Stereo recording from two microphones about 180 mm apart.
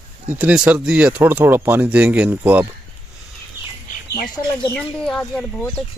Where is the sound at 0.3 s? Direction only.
10° right (ahead or behind).